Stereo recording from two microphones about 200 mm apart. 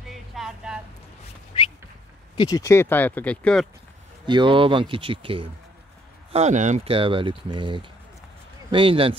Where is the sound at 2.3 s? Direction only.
20° left (ahead or behind).